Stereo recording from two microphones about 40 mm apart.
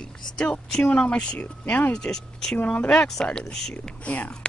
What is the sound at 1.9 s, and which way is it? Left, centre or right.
Speech, centre.